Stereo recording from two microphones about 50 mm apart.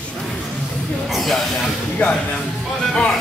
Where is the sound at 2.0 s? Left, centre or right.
Left.